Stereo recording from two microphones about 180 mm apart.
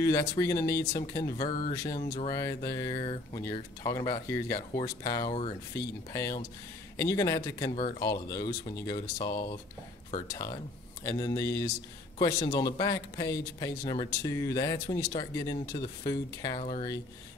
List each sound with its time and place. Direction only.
0.0 s speech: 20° left (ahead or behind)
16.5 s speech: 30° left (ahead or behind)